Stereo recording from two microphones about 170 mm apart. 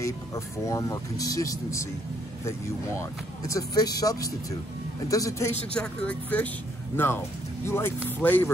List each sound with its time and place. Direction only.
0.0 s speech: 20° left (ahead or behind)
3.0 s speech: 20° left (ahead or behind)
5.8 s speech: 10° left (ahead or behind)
7.6 s speech: 15° left (ahead or behind)